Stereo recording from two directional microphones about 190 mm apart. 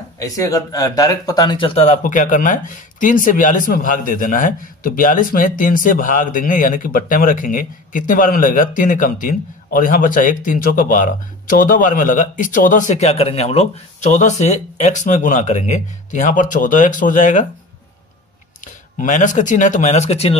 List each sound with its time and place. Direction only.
0.2 s speech: 20° left (ahead or behind); by 17.5 s 40° left (ahead or behind)
18.9 s speech: 40° left (ahead or behind)